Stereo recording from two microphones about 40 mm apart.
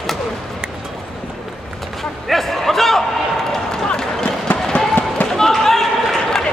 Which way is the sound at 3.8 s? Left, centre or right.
Centre.